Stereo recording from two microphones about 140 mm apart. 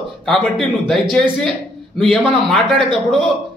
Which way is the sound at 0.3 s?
Centre (ahead or behind).